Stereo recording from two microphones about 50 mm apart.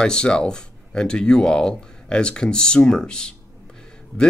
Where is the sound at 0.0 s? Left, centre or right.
Centre.